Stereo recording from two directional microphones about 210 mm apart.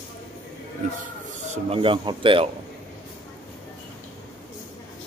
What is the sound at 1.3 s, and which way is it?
Speech, 35° right (ahead or behind).